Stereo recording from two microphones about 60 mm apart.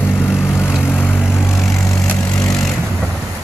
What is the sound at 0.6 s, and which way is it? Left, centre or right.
Vehicle, left.